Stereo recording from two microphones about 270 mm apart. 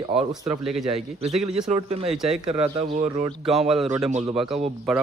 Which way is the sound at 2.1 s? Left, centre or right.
Centre.